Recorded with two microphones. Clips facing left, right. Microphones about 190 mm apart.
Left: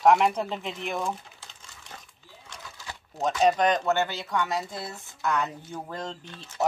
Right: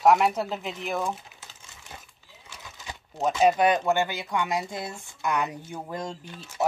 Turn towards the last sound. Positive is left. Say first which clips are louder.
# right 1 dB
turn(degrees=-10)  # may be behind; listen again after turning